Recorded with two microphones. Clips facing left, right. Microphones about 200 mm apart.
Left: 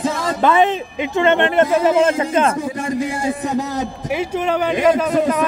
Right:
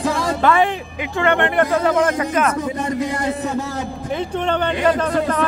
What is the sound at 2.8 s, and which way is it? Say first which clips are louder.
Speech: left 1 dB; 10° left (ahead or behind).